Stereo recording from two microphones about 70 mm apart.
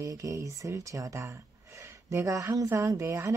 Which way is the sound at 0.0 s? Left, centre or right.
Right.